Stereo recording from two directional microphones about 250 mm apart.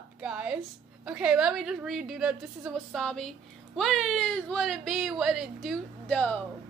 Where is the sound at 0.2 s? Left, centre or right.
Centre.